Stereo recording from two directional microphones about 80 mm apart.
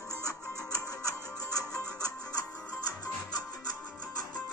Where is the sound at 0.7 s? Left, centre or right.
Left.